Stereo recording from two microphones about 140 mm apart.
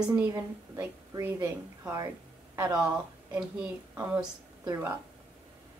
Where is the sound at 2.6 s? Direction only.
10° right (ahead or behind).